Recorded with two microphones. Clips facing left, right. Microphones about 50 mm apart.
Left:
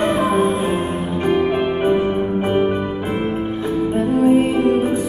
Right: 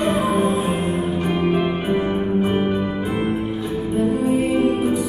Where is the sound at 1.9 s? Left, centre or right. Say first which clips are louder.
Left 2 dB; centre.